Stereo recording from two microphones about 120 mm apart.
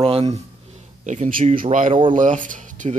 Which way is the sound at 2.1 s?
90° right.